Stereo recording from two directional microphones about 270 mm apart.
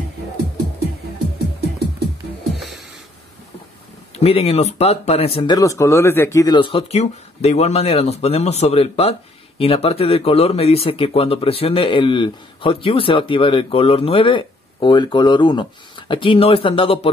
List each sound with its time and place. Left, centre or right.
2.5 s music: centre
4.2 s speech: left